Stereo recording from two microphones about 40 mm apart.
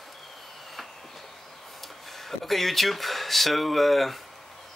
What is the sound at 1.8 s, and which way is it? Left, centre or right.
Speech, centre.